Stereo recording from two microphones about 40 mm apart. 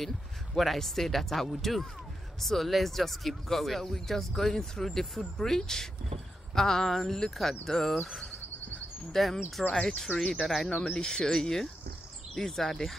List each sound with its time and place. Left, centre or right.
0.6 s speech: centre
5.4 s cricket: centre
7.2 s speech: centre
7.6 s cricket: centre
10.4 s speech: centre
10.9 s cricket: centre